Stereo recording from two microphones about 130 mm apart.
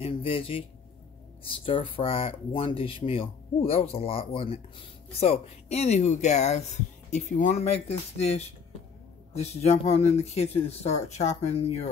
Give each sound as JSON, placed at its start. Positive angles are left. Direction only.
{"t": 0.0, "sound": "speech", "side_deg": 45}
{"t": 7.2, "sound": "speech", "side_deg": 75}